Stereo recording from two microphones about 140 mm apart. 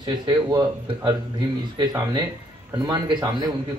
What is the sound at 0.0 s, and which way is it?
Speech, 25° right (ahead or behind).